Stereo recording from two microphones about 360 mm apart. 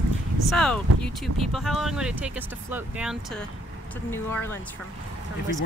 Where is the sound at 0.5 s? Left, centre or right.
Centre.